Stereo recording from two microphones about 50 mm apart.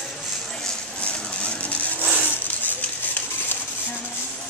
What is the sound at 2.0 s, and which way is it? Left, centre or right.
Wood, right.